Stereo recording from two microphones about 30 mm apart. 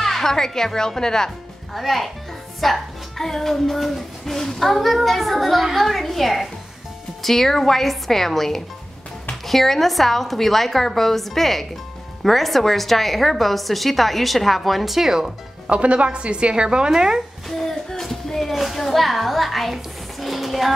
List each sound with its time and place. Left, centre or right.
0.0 s a woman's voice: centre
1.7 s a woman's voice: centre
15.0 s speech: centre
15.6 s speech: right
17.5 s a sound: centre
18.0 s music: centre
18.5 s a sound: centre
18.8 s a woman's voice: centre